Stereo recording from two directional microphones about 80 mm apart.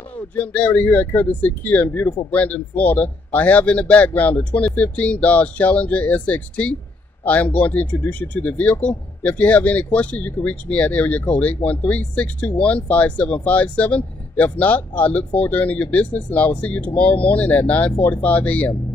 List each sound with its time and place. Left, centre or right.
0.4 s a man's voice: centre